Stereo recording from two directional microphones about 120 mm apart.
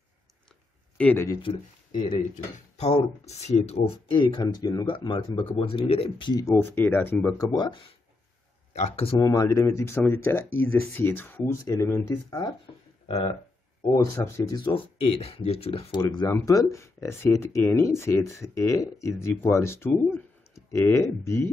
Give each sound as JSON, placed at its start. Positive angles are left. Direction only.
{"t": 1.1, "sound": "speech", "side_deg": 25}
{"t": 1.4, "sound": "speech", "side_deg": 45}
{"t": 2.3, "sound": "speech", "side_deg": 70}
{"t": 4.1, "sound": "speech", "side_deg": 40}
{"t": 4.8, "sound": "speech", "side_deg": 45}
{"t": 6.4, "sound": "speech", "side_deg": 20}
{"t": 7.3, "sound": "speech", "side_deg": 35}
{"t": 8.7, "sound": "speech", "side_deg": 60}
{"t": 9.2, "sound": "speech", "side_deg": 30}
{"t": 13.9, "sound": "speech", "side_deg": 25}
{"t": 14.5, "sound": "speech", "side_deg": 45}
{"t": 16.0, "sound": "speech", "side_deg": 40}
{"t": 16.3, "sound": "speech", "side_deg": 25}